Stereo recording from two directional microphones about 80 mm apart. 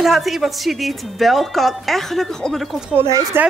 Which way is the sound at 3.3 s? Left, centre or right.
Right.